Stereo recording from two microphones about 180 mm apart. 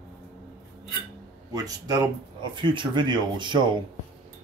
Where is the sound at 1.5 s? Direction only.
20° right (ahead or behind).